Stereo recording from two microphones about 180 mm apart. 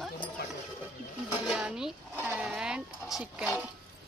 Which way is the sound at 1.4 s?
5° right (ahead or behind).